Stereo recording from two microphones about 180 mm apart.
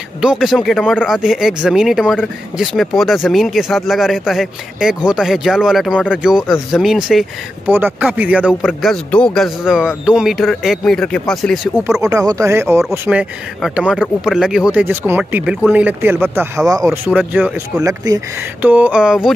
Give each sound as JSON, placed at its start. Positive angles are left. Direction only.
{"t": 0.2, "sound": "speech", "side_deg": -5}
{"t": 12.0, "sound": "speech", "side_deg": -20}
{"t": 17.8, "sound": "speech", "side_deg": -20}
{"t": 18.6, "sound": "speech", "side_deg": -10}